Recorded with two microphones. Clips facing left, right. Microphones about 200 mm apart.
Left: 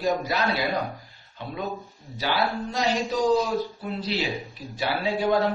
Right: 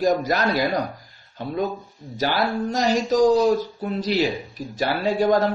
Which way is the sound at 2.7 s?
45° right (ahead or behind).